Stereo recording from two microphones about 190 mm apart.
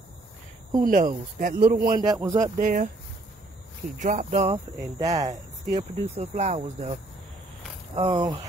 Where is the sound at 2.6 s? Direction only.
45° right (ahead or behind).